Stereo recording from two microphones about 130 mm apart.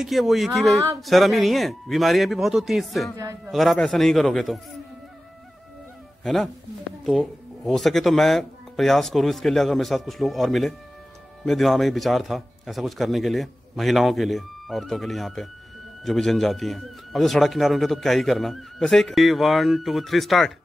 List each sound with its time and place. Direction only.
0.0 s a man's voice: centre (ahead or behind)
3.2 s a man's voice: 25° right (ahead or behind)
3.5 s a man's voice: centre (ahead or behind)
6.2 s a man's voice: centre (ahead or behind)